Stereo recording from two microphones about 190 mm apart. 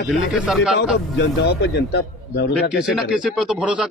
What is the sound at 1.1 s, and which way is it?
A man's voice, 60° left (ahead or behind).